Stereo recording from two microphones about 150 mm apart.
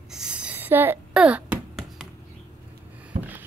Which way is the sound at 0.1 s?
5° right (ahead or behind).